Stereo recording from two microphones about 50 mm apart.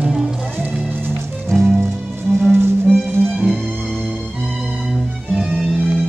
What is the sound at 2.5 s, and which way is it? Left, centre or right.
Music, right.